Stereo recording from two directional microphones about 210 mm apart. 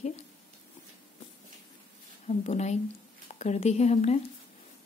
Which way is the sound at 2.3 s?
30° left (ahead or behind).